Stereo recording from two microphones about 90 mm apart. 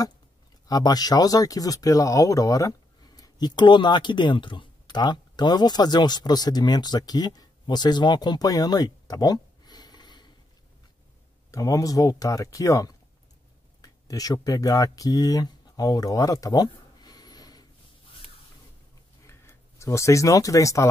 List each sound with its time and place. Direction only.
0.7 s speech: 45° left (ahead or behind)
3.2 s speech: 50° left (ahead or behind)
11.5 s speech: 40° left (ahead or behind)
19.2 s speech: 30° left (ahead or behind)